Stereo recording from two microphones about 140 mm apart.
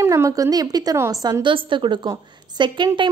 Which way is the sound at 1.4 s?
35° right (ahead or behind).